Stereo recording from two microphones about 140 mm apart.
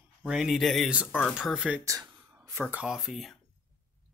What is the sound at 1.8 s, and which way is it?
Speech, 25° right (ahead or behind).